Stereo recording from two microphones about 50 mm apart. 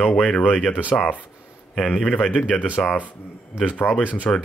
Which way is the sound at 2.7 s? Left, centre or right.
Left.